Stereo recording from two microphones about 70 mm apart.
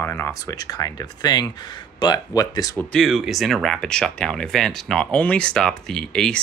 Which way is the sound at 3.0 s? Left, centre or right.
Centre.